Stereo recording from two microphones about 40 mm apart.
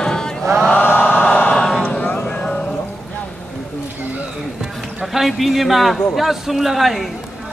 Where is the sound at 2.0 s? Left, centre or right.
Left.